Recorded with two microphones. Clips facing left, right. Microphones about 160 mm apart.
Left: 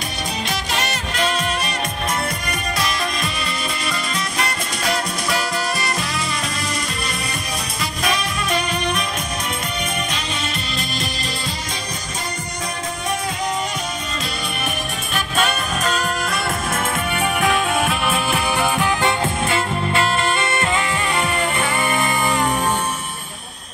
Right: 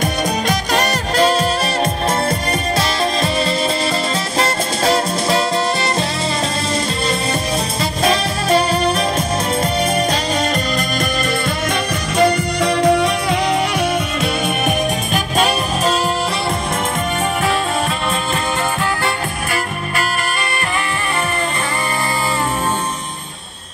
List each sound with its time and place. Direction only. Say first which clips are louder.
0.5 s music: right 7 dB; 35° right (ahead or behind)
4.4 s music: right 10 dB; 30° right (ahead or behind)
8.0 s music: right 5 dB; 30° right (ahead or behind)
12.2 s music: right 17 dB; 70° right (ahead or behind)
15.1 s music: right 3 dB; 40° right (ahead or behind)
18.3 s music: even; 15° left (ahead or behind)